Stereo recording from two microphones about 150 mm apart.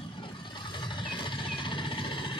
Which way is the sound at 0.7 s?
30° left (ahead or behind).